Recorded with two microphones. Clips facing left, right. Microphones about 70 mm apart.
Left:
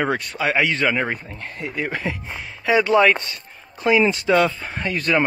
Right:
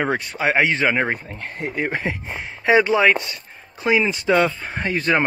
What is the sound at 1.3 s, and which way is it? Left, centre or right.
Speech, right.